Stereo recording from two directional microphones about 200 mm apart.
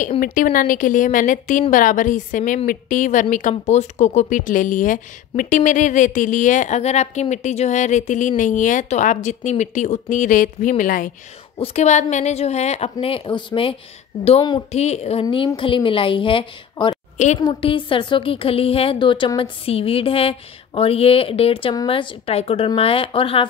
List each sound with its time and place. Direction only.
0.2 s a woman's voice: 45° left (ahead or behind)
11.5 s a woman's voice: 30° left (ahead or behind)